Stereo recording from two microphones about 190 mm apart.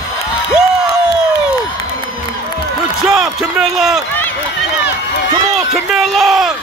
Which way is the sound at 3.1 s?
5° right (ahead or behind).